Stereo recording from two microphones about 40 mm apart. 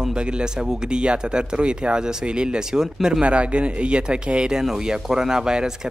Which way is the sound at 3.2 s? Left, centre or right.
Right.